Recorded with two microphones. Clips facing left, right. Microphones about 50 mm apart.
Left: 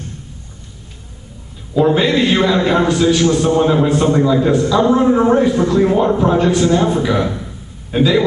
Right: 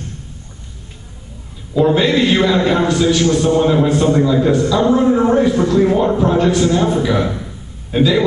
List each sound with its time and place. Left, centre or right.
1.7 s a man's voice: centre
4.0 s a man's voice: centre